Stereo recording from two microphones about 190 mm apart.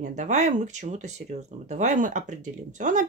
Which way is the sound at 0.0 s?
40° right (ahead or behind).